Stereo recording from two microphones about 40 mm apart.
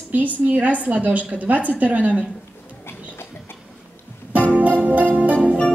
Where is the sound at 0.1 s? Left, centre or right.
Right.